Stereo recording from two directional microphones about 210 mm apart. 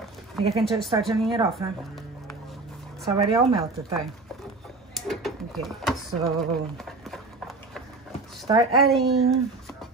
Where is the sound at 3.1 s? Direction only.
15° right (ahead or behind).